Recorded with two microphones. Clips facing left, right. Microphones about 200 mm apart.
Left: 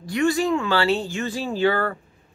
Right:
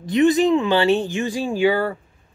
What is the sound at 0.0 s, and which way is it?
Speech, 20° right (ahead or behind).